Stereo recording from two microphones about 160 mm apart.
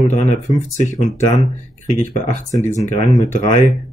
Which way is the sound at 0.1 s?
45° left (ahead or behind).